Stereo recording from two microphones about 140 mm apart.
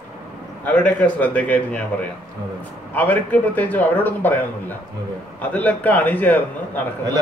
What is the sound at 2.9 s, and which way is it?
A man's voice, 10° left (ahead or behind).